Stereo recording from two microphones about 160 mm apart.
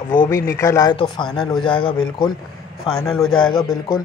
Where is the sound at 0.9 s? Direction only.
30° left (ahead or behind).